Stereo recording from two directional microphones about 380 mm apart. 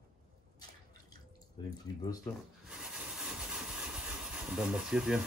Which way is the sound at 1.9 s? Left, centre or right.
Left.